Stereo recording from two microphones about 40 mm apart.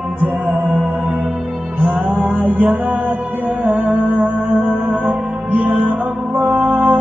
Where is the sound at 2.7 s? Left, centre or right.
Right.